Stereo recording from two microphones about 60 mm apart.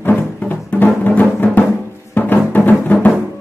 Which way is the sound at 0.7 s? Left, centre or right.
Left.